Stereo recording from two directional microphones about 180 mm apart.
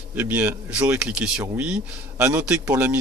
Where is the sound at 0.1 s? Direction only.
10° right (ahead or behind).